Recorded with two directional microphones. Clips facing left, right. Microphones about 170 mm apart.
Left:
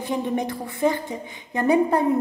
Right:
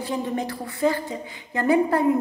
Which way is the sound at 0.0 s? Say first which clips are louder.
Left 2 dB; 20° left (ahead or behind).